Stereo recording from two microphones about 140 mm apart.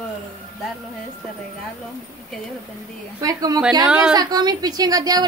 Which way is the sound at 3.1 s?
25° right (ahead or behind).